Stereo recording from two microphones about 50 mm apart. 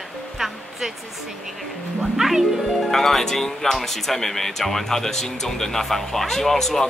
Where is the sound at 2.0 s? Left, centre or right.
Centre.